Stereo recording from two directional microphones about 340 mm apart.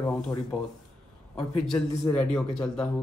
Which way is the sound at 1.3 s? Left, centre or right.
Centre.